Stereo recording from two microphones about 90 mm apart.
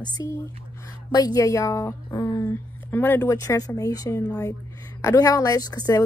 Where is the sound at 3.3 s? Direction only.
40° left (ahead or behind).